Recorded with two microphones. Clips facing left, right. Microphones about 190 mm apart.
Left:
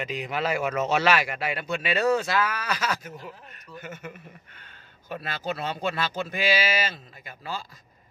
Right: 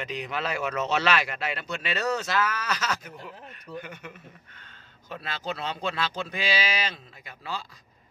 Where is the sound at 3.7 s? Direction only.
45° left (ahead or behind).